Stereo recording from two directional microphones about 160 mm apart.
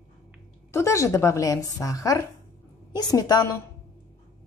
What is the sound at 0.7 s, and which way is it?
A woman's voice, 20° left (ahead or behind).